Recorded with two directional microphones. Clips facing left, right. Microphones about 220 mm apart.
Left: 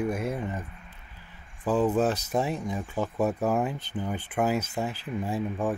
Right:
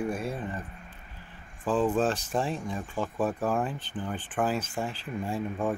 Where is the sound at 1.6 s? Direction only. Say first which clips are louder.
Left 2 dB; 10° left (ahead or behind).